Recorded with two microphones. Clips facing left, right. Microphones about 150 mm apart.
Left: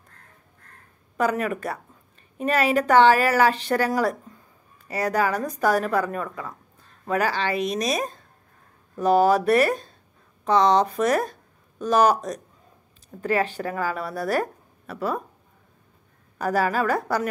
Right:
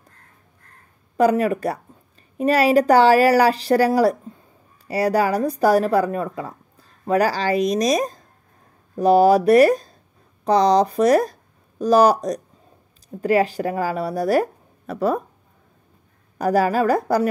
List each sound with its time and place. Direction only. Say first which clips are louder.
1.1 s a woman's voice: right 7 dB; 35° right (ahead or behind)
16.3 s a woman's voice: right 5 dB; 40° right (ahead or behind)